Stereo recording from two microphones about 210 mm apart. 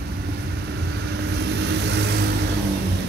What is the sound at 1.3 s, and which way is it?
Vehicle, 55° right (ahead or behind).